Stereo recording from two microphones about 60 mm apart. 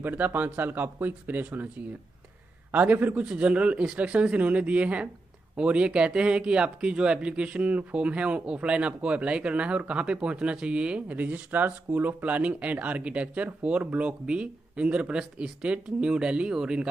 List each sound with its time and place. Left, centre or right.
0.0 s speech: right; by 16.8 s centre